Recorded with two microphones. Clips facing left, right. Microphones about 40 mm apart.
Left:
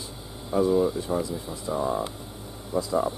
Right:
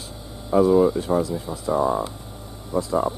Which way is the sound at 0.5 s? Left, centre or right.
Centre.